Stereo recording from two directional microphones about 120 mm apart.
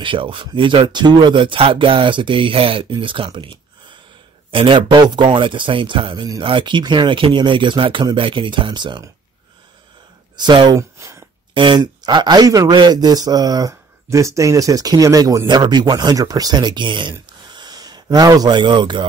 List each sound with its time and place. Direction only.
0.0 s speech: 45° right (ahead or behind)
10.3 s speech: 40° right (ahead or behind)
10.8 s a sound: 25° right (ahead or behind)
11.5 s speech: 40° right (ahead or behind)